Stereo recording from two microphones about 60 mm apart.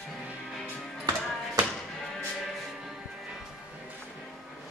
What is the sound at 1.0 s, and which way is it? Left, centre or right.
Music, right.